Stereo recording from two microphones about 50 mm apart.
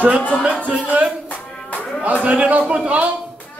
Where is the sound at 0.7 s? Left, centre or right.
Right.